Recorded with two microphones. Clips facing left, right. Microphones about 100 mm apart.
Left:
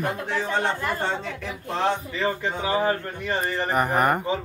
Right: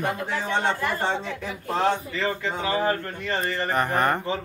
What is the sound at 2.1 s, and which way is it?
Speech, 15° left (ahead or behind).